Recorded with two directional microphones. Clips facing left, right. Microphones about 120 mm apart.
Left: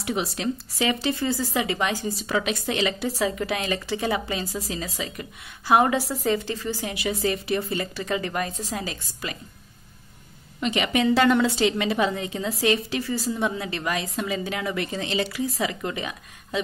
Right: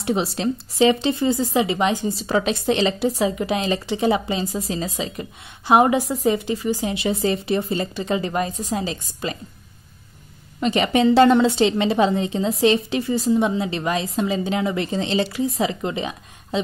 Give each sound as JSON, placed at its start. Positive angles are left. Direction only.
{"t": 0.0, "sound": "a woman's voice", "side_deg": -30}
{"t": 8.7, "sound": "a woman's voice", "side_deg": -25}
{"t": 10.6, "sound": "a woman's voice", "side_deg": -35}